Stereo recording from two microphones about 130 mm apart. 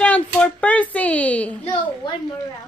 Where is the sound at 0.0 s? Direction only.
10° left (ahead or behind).